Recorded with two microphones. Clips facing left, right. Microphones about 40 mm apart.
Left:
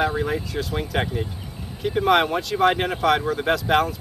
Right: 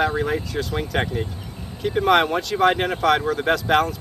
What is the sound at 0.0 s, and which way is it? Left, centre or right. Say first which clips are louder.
Speech: right 1 dB; centre.